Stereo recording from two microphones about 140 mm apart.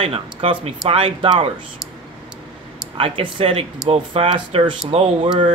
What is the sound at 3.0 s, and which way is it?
Speech, 40° right (ahead or behind).